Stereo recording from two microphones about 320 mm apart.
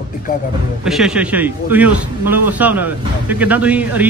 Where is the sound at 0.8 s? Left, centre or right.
Centre.